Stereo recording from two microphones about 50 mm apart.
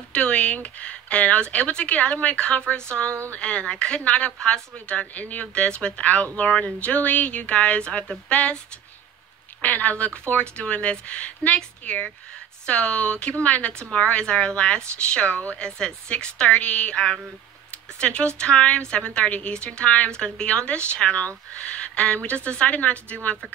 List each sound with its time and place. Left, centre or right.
0.1 s a woman's voice: left
9.6 s a woman's voice: left
20.1 s a woman's voice: centre